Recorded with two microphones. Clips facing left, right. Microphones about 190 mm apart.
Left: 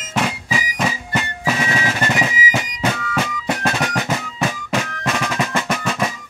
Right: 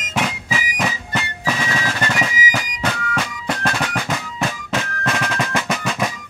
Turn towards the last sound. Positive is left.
turn(degrees=0)  # may be behind; listen again after turning